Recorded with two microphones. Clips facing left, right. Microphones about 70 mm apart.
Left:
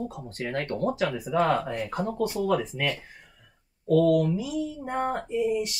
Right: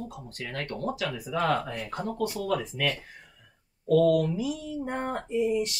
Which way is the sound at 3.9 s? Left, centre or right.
Centre.